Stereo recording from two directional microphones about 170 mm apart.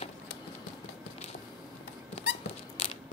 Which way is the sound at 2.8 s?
35° left (ahead or behind).